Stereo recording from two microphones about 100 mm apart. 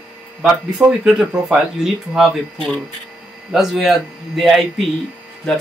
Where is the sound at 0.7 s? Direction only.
10° right (ahead or behind).